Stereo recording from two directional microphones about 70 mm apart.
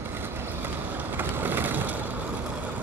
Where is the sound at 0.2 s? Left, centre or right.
Right.